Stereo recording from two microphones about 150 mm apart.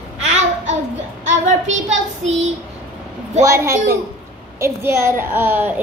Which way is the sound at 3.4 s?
20° right (ahead or behind).